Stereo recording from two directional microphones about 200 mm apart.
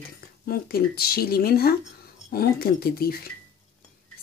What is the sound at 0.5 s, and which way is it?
Speech, 50° left (ahead or behind).